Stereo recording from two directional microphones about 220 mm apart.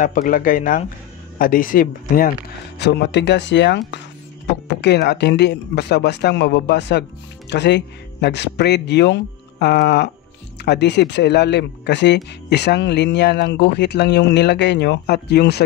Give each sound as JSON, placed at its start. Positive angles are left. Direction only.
{"t": 0.0, "sound": "speech", "side_deg": 35}
{"t": 2.8, "sound": "speech", "side_deg": 50}